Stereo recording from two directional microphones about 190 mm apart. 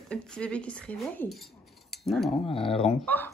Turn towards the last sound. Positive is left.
turn(degrees=10)  # may be behind; listen again after turning